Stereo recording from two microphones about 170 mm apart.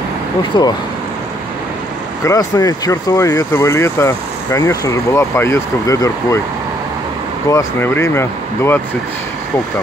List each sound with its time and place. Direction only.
0.5 s speech: 25° left (ahead or behind)
2.2 s speech: 20° left (ahead or behind)
7.5 s speech: 15° left (ahead or behind)